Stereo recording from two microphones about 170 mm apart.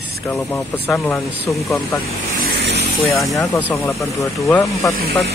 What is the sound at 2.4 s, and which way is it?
Vehicle, 70° right (ahead or behind).